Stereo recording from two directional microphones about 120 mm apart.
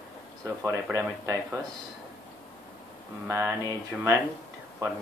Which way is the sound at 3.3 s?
25° right (ahead or behind).